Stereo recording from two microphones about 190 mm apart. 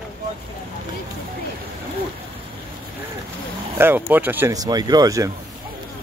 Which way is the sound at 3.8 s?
10° right (ahead or behind).